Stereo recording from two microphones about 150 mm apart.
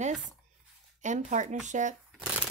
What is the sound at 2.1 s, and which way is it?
Shuffling cards, 5° right (ahead or behind).